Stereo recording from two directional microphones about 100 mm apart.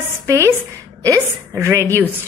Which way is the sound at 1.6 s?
30° right (ahead or behind).